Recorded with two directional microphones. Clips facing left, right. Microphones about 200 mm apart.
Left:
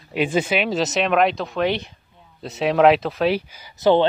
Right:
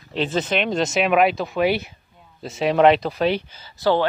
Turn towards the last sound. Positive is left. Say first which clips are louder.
# left 3 dB
turn(degrees=20)  # may be behind; listen again after turning